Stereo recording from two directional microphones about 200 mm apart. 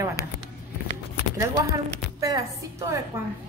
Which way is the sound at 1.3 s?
15° right (ahead or behind).